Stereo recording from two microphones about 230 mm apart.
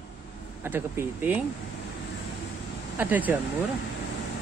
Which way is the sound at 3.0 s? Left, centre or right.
Centre.